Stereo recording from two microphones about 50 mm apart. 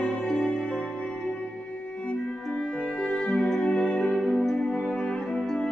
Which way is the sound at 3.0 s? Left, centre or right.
Left.